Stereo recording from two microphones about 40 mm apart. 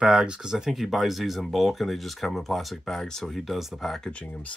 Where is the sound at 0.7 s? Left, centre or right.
Centre.